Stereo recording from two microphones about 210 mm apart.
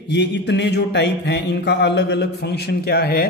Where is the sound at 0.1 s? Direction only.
55° left (ahead or behind).